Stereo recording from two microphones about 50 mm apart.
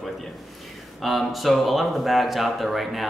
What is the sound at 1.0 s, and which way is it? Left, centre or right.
Speech, centre.